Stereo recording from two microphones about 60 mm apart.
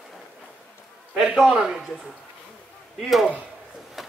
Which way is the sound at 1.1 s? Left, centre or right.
Centre.